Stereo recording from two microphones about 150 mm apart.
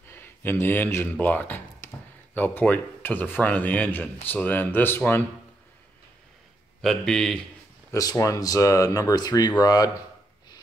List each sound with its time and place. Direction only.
0.1 s a man's voice: 15° left (ahead or behind)
6.8 s speech: centre (ahead or behind)
7.9 s speech: 25° left (ahead or behind)